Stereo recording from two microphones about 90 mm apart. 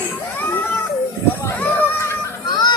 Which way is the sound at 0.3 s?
20° left (ahead or behind).